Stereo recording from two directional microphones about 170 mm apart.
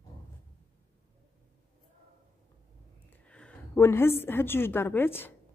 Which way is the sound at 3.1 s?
5° left (ahead or behind).